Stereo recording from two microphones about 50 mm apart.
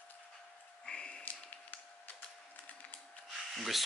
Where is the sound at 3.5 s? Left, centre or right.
Centre.